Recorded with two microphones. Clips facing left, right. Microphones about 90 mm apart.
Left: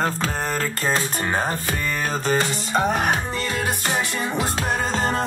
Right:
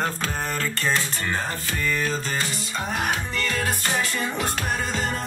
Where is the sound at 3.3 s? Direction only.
25° left (ahead or behind).